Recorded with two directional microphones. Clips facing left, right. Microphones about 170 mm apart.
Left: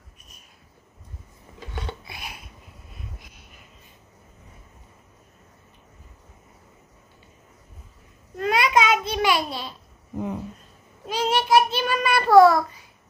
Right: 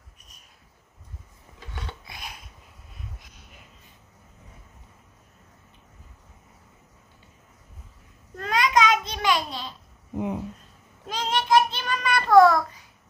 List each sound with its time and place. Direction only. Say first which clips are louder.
2.0 s a sound: left 2 dB; 10° left (ahead or behind)
8.4 s babbling: left 2 dB; 10° left (ahead or behind)
11.1 s child singing: left 2 dB; 10° left (ahead or behind)